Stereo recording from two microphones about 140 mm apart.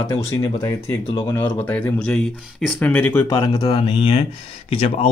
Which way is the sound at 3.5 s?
40° left (ahead or behind).